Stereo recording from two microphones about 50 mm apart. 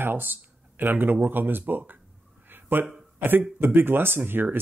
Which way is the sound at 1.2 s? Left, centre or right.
Right.